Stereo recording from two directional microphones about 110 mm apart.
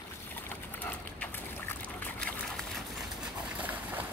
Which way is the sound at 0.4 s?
15° left (ahead or behind).